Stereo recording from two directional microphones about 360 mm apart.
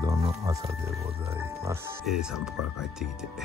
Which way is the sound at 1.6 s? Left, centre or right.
Centre.